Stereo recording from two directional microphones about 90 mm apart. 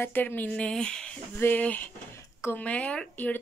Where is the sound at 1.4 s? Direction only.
20° left (ahead or behind).